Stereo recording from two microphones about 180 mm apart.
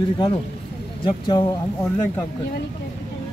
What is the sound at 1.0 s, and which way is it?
Speech, 25° left (ahead or behind).